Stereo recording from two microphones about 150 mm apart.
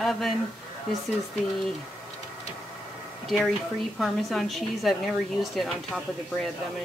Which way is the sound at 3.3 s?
Centre (ahead or behind).